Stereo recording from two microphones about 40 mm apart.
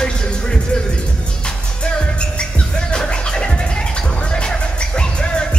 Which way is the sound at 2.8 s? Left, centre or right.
Left.